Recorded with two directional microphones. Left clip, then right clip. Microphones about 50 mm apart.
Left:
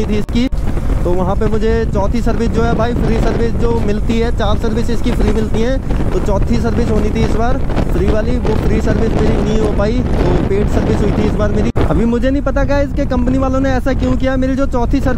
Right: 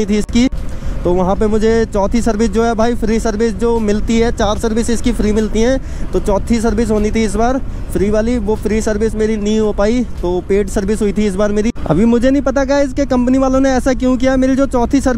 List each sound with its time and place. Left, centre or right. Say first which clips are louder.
0.1 s speech: right 3 dB; right